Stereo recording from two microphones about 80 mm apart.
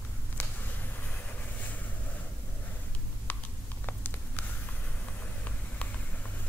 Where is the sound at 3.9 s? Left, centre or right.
Left.